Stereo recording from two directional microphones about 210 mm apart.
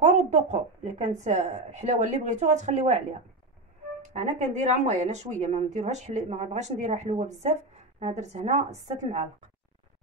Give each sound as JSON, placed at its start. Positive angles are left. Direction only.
{"t": 0.0, "sound": "speech", "side_deg": -30}